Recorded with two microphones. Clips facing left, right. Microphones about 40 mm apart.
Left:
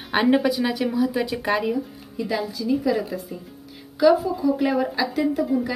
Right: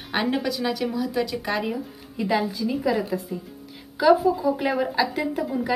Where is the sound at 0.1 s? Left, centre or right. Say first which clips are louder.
Left 5 dB; centre.